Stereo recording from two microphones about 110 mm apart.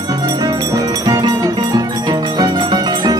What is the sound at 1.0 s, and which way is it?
Music, 35° right (ahead or behind).